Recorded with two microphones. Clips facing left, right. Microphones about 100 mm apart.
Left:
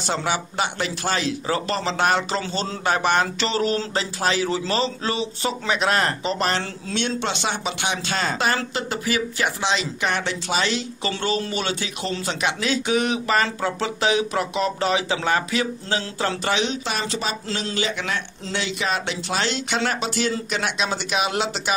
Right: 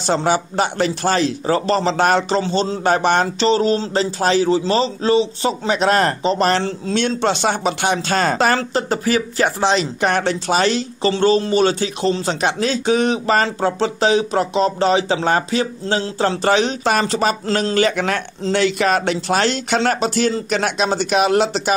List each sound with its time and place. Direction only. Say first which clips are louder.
0.0 s speech: right 7 dB; 35° right (ahead or behind)
2.4 s a man's voice: right 7 dB; 25° right (ahead or behind)
16.4 s speech: right 10 dB; 40° right (ahead or behind)